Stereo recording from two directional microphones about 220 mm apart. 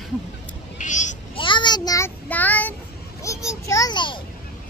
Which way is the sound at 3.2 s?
15° left (ahead or behind).